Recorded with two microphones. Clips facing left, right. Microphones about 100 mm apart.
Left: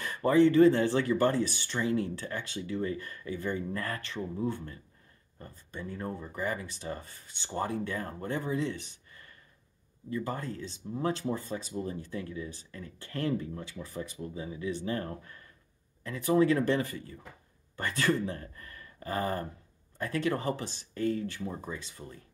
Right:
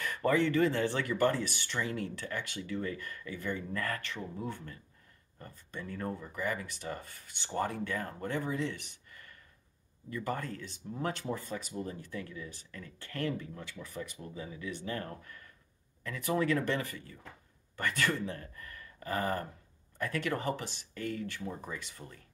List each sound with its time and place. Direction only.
0.0 s speech: 30° left (ahead or behind)
6.1 s speech: 35° left (ahead or behind)